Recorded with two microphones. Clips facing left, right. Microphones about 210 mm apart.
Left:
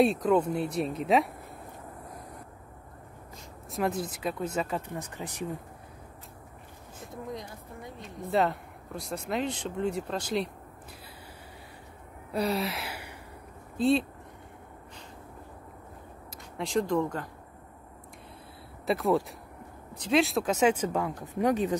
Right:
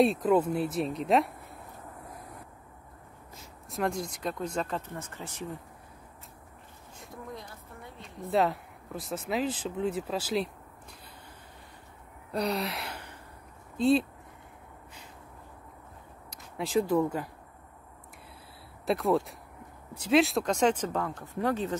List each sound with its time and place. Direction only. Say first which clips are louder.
0.0 s speech: even; centre (ahead or behind)
3.7 s speech: left 1 dB; centre (ahead or behind)
7.3 s a sound: left 4 dB; 15° left (ahead or behind)
8.3 s speech: even; centre (ahead or behind)
12.3 s gasp: left 1 dB; 5° left (ahead or behind)
13.7 s speech: right 1 dB; centre (ahead or behind)
16.5 s speech: right 1 dB; 5° right (ahead or behind)
18.9 s speech: even; centre (ahead or behind)